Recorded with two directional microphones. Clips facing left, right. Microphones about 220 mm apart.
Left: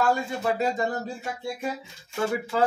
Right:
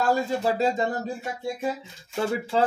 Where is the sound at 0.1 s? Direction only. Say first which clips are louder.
Right 2 dB; 30° right (ahead or behind).